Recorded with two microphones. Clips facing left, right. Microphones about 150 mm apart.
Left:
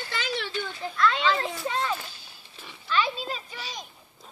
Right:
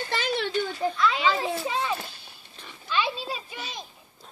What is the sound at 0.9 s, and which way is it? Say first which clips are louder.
A child's voice: left 2 dB; centre (ahead or behind).